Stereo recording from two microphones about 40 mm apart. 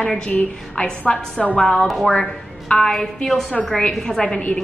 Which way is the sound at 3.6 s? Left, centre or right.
Centre.